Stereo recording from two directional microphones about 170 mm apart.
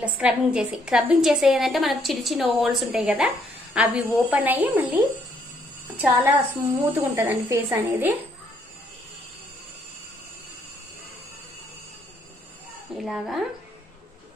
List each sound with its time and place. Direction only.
0.0 s a woman's voice: 5° right (ahead or behind)
12.9 s a woman's voice: centre (ahead or behind)